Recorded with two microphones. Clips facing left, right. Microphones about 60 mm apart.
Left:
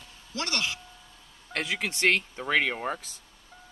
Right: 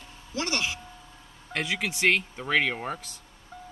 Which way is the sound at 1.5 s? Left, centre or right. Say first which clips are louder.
Right 1 dB; centre.